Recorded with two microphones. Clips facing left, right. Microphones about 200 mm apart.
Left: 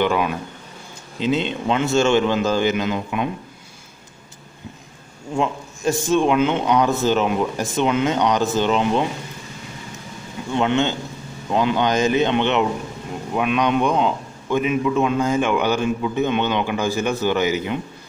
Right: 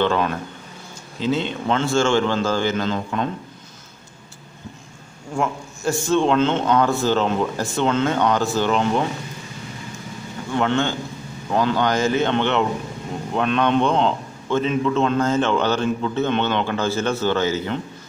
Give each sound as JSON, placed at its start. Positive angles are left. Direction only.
{"t": 0.0, "sound": "a man's voice", "side_deg": 10}
{"t": 5.3, "sound": "a man's voice", "side_deg": 20}
{"t": 10.5, "sound": "a man's voice", "side_deg": 20}